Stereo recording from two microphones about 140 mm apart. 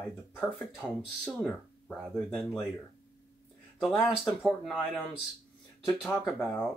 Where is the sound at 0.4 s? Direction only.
5° left (ahead or behind).